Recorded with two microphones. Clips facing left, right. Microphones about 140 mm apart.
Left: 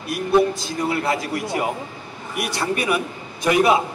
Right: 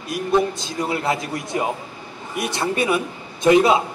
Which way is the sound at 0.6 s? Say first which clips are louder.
Left 1 dB; 20° right (ahead or behind).